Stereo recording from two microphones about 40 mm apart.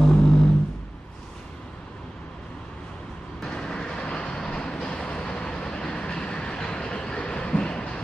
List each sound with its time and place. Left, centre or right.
0.1 s music: centre
3.3 s vehicle: centre
6.1 s train: centre